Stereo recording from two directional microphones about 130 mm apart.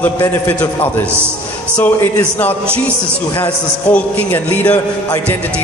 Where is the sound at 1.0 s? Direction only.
20° right (ahead or behind).